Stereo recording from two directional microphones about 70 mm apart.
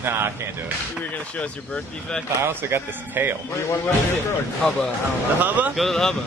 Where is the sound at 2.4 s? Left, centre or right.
Right.